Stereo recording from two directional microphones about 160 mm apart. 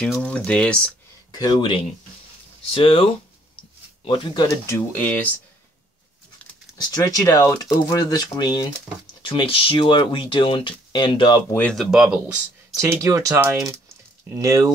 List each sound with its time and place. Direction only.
0.0 s speech: 5° left (ahead or behind)
1.3 s speech: 25° left (ahead or behind)
4.7 s speech: 10° left (ahead or behind)
7.0 s speech: 20° left (ahead or behind)
11.5 s speech: 10° left (ahead or behind)
11.8 s speech: 5° right (ahead or behind)
12.8 s speech: 20° right (ahead or behind)